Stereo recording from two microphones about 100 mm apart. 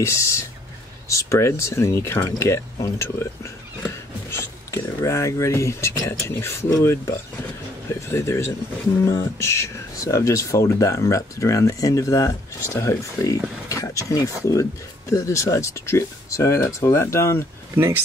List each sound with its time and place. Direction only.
0.0 s speech: 30° left (ahead or behind)
4.3 s speech: 30° left (ahead or behind)